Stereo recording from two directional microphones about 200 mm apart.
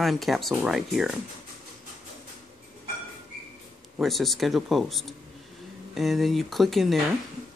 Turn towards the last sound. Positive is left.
turn(degrees=0)  # may be behind; listen again after turning